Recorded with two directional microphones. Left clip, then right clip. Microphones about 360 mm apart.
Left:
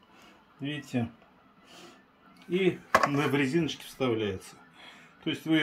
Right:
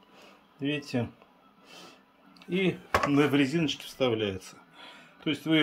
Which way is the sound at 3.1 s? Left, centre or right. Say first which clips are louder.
Right 2 dB; centre.